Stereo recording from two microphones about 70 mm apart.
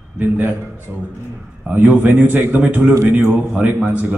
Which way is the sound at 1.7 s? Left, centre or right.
Right.